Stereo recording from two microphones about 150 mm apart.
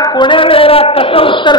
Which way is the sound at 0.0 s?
30° left (ahead or behind).